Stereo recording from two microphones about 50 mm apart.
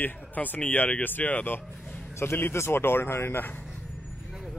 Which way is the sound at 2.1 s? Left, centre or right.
Left.